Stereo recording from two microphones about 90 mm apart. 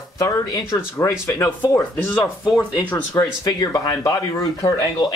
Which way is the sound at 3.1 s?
45° left (ahead or behind).